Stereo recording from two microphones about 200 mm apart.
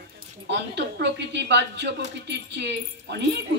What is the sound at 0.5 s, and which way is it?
A woman's voice, 60° right (ahead or behind).